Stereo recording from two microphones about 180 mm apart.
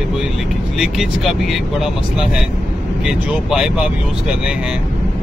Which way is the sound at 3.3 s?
5° right (ahead or behind).